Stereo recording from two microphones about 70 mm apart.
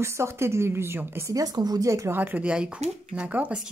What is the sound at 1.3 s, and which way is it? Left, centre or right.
Speech, right.